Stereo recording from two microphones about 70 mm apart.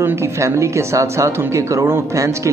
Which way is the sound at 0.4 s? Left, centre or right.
Right.